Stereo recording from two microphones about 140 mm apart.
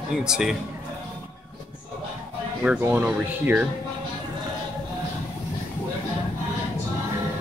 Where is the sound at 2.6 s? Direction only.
15° right (ahead or behind).